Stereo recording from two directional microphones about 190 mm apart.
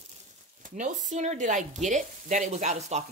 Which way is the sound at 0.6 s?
40° right (ahead or behind).